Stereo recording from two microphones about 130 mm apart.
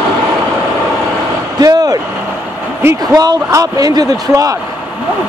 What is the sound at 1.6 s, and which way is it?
Vehicle, 30° right (ahead or behind).